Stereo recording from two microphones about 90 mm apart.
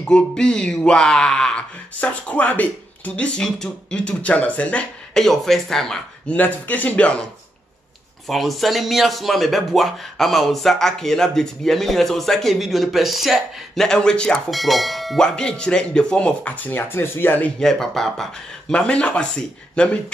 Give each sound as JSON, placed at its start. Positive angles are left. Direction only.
{"t": 0.1, "sound": "speech", "side_deg": 10}
{"t": 6.3, "sound": "speech", "side_deg": 20}
{"t": 8.3, "sound": "speech", "side_deg": 0}
{"t": 17.6, "sound": "speech", "side_deg": 5}